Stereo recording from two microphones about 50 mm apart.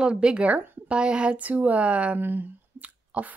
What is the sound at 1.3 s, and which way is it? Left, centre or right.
Speech, right.